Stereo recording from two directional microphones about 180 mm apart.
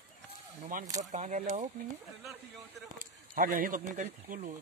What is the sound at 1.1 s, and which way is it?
Speech, 45° right (ahead or behind).